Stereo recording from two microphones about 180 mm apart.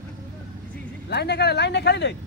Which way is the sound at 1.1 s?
65° left (ahead or behind).